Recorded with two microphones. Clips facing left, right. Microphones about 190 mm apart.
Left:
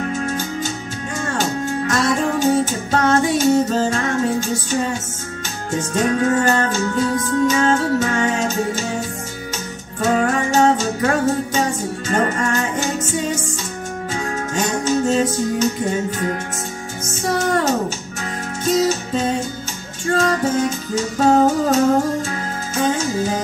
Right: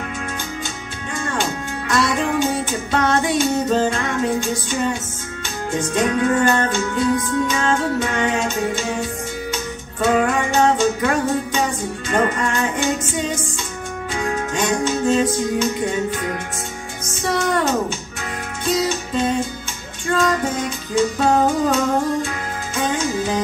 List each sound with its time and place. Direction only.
0.0 s music: 40° left (ahead or behind)
10.0 s music: 40° left (ahead or behind)